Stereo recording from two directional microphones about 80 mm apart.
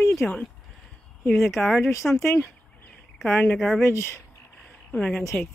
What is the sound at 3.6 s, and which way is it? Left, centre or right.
Speech, centre.